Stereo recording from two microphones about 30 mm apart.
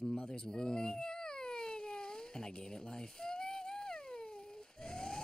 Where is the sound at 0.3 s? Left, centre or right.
Left.